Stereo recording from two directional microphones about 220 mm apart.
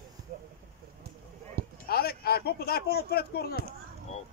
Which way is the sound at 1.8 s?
45° left (ahead or behind).